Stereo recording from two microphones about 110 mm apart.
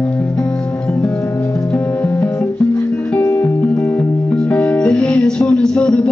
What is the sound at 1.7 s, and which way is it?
Music, 20° left (ahead or behind).